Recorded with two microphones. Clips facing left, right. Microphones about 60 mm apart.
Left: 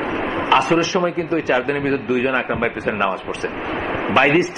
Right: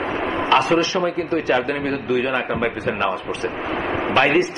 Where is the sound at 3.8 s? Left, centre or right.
Centre.